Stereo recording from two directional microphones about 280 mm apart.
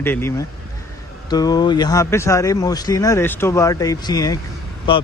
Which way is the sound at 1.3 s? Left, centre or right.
Centre.